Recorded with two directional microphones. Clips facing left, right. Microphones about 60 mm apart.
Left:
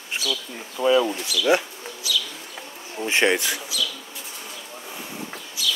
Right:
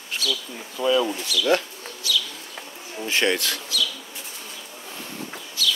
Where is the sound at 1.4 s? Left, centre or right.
Centre.